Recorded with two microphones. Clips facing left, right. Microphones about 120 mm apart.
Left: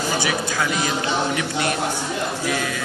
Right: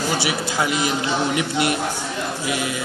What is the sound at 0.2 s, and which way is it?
A man's voice, 20° right (ahead or behind).